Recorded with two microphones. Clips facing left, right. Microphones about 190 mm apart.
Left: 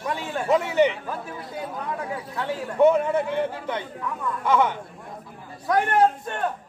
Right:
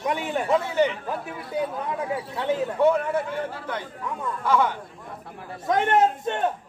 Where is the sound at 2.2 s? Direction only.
20° right (ahead or behind).